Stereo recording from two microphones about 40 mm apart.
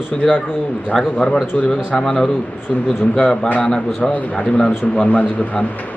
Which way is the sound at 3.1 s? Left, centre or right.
Left.